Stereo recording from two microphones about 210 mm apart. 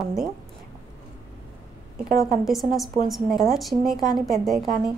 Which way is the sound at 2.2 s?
Centre (ahead or behind).